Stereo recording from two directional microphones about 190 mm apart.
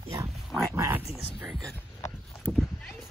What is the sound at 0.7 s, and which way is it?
Speech, 15° right (ahead or behind).